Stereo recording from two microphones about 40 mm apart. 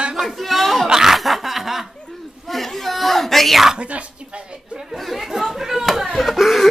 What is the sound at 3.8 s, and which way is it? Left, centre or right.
Speech, right.